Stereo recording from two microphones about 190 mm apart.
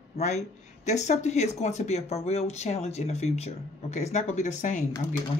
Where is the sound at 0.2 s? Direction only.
35° left (ahead or behind).